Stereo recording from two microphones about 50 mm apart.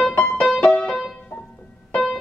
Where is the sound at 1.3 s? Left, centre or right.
Left.